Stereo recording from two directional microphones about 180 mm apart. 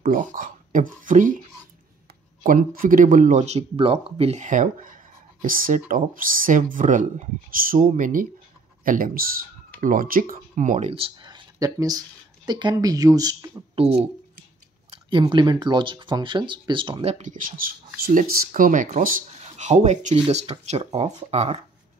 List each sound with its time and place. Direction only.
0.0 s speech: 50° right (ahead or behind)
2.4 s speech: 50° right (ahead or behind); by 13.5 s 20° right (ahead or behind)
14.9 s speech: 25° right (ahead or behind)
17.1 s speech: 45° right (ahead or behind)